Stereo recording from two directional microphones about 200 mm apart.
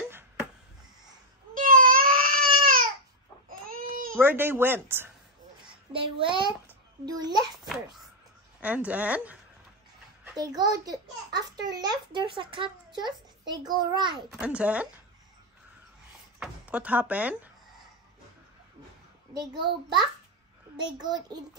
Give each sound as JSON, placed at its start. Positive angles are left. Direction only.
{"t": 1.5, "sound": "crying", "side_deg": -45}
{"t": 3.4, "sound": "baby cry", "side_deg": -45}
{"t": 4.1, "sound": "a woman's voice", "side_deg": -10}
{"t": 5.9, "sound": "a child's voice", "side_deg": -25}
{"t": 7.6, "sound": "a child's voice", "side_deg": 0}
{"t": 10.3, "sound": "a child's voice", "side_deg": -20}
{"t": 14.3, "sound": "a woman's voice", "side_deg": -5}
{"t": 16.3, "sound": "speech", "side_deg": -5}
{"t": 20.7, "sound": "a child's voice", "side_deg": -20}